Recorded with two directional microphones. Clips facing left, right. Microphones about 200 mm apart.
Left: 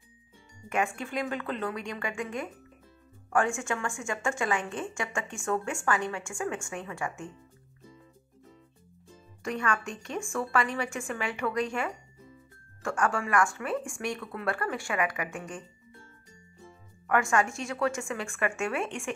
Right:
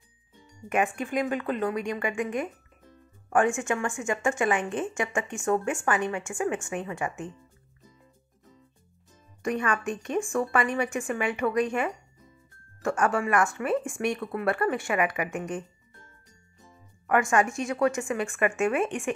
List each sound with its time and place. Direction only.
0.7 s a woman's voice: 20° right (ahead or behind)
9.4 s a woman's voice: 20° right (ahead or behind)
17.1 s a woman's voice: 20° right (ahead or behind)